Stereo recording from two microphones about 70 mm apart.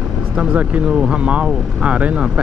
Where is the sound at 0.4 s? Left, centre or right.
Centre.